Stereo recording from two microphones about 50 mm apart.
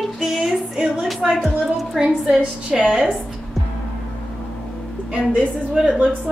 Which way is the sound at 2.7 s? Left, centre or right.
Centre.